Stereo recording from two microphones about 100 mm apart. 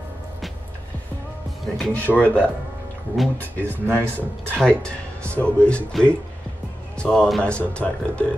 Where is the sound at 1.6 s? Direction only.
Centre (ahead or behind).